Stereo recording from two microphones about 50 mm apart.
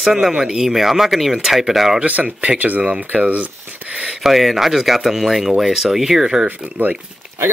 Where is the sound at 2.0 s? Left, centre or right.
Right.